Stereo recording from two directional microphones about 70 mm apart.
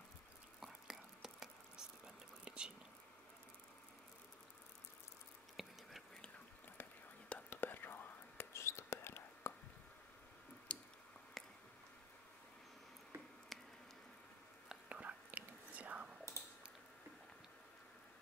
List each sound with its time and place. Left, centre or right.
0.6 s whispering: centre
5.6 s whispering: centre
6.8 s whispering: left
8.5 s whispering: left
10.7 s squish: centre
13.5 s squish: centre
14.7 s whispering: centre